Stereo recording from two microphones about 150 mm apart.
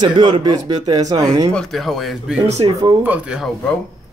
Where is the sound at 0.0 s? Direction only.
30° right (ahead or behind).